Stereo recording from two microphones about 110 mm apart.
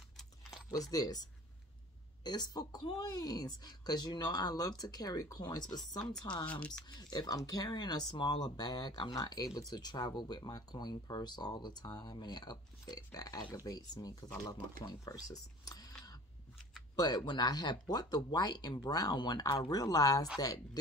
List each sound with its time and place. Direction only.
0.7 s speech: 35° left (ahead or behind)
6.4 s speech: 10° left (ahead or behind)
6.9 s speech: 40° left (ahead or behind)